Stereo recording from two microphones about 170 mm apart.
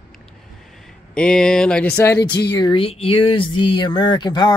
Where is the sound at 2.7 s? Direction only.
35° left (ahead or behind).